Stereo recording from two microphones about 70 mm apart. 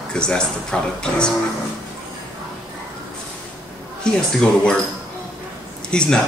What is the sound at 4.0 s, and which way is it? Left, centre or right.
Speech, centre.